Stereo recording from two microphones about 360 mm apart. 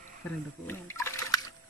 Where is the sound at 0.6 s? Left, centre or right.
Centre.